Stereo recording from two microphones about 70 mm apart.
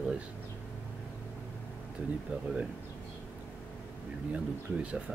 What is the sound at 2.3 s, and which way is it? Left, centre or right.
Speech, centre.